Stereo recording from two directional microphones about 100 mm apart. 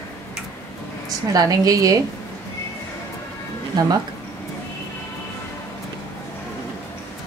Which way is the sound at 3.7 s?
40° right (ahead or behind).